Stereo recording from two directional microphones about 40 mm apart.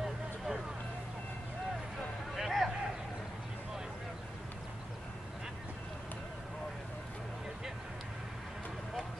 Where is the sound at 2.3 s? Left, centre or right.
Centre.